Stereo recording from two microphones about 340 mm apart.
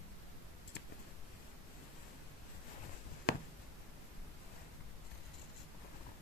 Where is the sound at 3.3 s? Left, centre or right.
Left.